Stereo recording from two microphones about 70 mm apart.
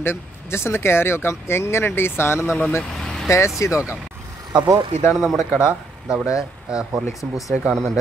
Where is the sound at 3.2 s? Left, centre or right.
Left.